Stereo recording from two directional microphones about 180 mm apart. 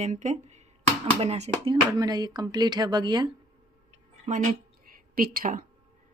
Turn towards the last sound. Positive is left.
turn(degrees=-50)  # may be behind; listen again after turning